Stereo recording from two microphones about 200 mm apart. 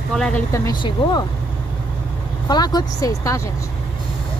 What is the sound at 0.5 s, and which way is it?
Speech, 20° left (ahead or behind).